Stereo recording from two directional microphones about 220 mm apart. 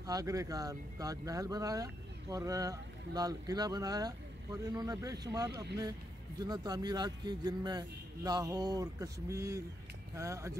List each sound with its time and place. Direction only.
0.0 s speech: 15° right (ahead or behind)